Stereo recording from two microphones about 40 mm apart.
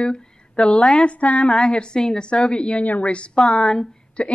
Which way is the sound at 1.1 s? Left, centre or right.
Left.